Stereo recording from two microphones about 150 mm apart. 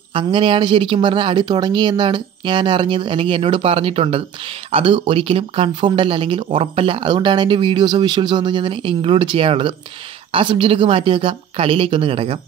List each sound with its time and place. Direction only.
0.1 s speech: 35° right (ahead or behind)